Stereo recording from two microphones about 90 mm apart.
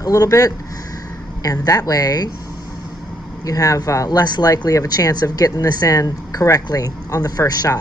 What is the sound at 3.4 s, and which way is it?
Speech, 40° left (ahead or behind).